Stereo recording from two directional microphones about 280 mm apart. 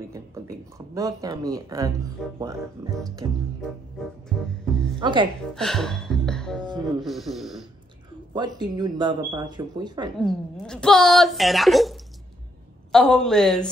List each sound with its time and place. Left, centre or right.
0.1 s speech: centre
5.0 s speech: centre
5.5 s a woman's voice: centre
8.4 s speech: centre
10.1 s a woman's voice: centre